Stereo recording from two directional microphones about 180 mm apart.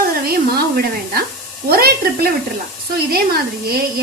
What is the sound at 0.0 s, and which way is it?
Sizzle, 60° right (ahead or behind).